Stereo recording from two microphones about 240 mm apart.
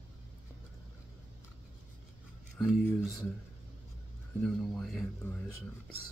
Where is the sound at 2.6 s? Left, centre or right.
Centre.